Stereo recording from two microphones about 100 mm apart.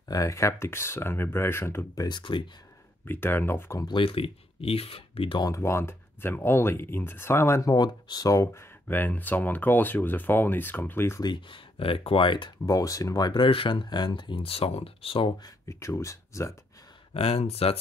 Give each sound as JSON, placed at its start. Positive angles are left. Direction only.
{"t": 0.1, "sound": "speech", "side_deg": 35}
{"t": 2.0, "sound": "speech", "side_deg": 45}
{"t": 3.1, "sound": "speech", "side_deg": 20}
{"t": 3.8, "sound": "speech", "side_deg": 60}
{"t": 5.4, "sound": "speech", "side_deg": 30}
{"t": 7.7, "sound": "speech", "side_deg": 45}
{"t": 8.8, "sound": "speech", "side_deg": 20}
{"t": 11.2, "sound": "speech", "side_deg": 55}
{"t": 12.6, "sound": "speech", "side_deg": 35}
{"t": 13.3, "sound": "speech", "side_deg": 55}
{"t": 15.4, "sound": "speech", "side_deg": 30}
{"t": 17.1, "sound": "speech", "side_deg": 80}